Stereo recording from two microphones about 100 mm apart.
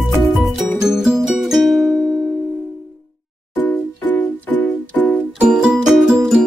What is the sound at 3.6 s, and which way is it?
Music, 15° left (ahead or behind).